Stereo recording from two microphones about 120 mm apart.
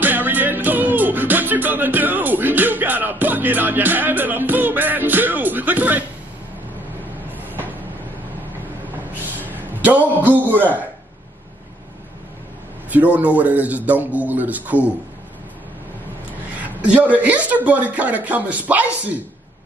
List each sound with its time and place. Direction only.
0.0 s music: 15° right (ahead or behind)
7.3 s vehicle: 15° right (ahead or behind)
9.5 s a sound: 15° right (ahead or behind)
10.2 s speech: 15° right (ahead or behind)
12.9 s speech: 10° right (ahead or behind)
16.6 s speech: 10° right (ahead or behind)